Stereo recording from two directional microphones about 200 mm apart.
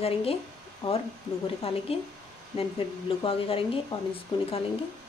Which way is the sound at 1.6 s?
30° left (ahead or behind).